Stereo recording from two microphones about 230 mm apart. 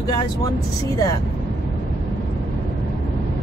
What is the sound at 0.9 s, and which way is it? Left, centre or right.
Speech, centre.